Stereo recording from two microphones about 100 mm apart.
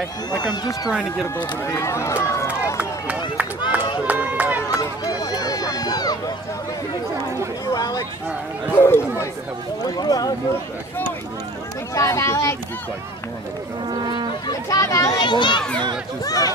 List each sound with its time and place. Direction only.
0.4 s speech: 40° left (ahead or behind)
1.2 s speech: 25° left (ahead or behind)
4.1 s run: 15° right (ahead or behind)
5.2 s run: 40° left (ahead or behind)
7.6 s a sound: 40° left (ahead or behind)
8.7 s a sound: 25° left (ahead or behind)
9.8 s speech: 40° left (ahead or behind)
11.9 s speech: 30° left (ahead or behind)
13.8 s speech: 50° right (ahead or behind)
14.7 s speech: 35° left (ahead or behind)
15.1 s a child's voice: 50° left (ahead or behind)
16.3 s speech: 35° left (ahead or behind)